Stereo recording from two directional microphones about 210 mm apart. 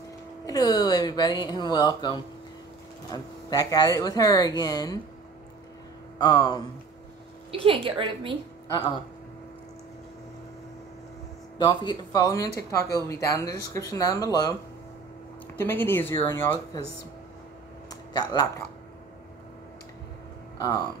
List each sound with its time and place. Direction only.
0.5 s speech: 20° left (ahead or behind)
6.1 s speech: 20° left (ahead or behind)
7.6 s a woman's voice: 25° right (ahead or behind)
8.6 s speech: 15° left (ahead or behind)
11.5 s speech: 20° left (ahead or behind)
15.5 s speech: 10° left (ahead or behind)
17.8 s a sound: 20° left (ahead or behind)